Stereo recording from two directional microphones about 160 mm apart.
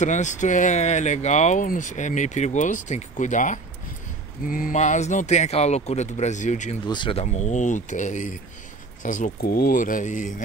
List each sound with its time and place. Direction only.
0.0 s speech: 50° left (ahead or behind)
6.9 s speech: 30° left (ahead or behind)
7.2 s speech: 45° left (ahead or behind)